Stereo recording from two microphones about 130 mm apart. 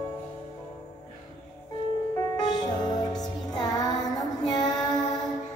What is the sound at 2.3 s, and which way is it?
Music, 30° left (ahead or behind).